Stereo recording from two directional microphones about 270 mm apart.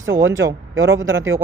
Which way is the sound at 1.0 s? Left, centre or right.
Right.